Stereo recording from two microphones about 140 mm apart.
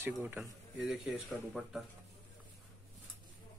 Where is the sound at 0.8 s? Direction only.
Centre (ahead or behind).